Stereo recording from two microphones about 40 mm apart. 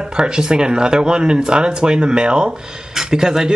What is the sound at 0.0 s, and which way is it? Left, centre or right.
Speech, right.